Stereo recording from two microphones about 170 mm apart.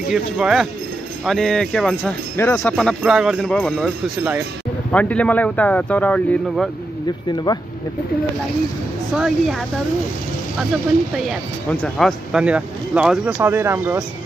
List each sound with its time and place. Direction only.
0.1 s speech: centre (ahead or behind)
2.3 s speech: 15° left (ahead or behind)
4.9 s speech: 10° left (ahead or behind)
7.5 s speech: 25° left (ahead or behind)
9.1 s speech: centre (ahead or behind)
11.7 s speech: 5° left (ahead or behind); by 14.0 s 15° right (ahead or behind)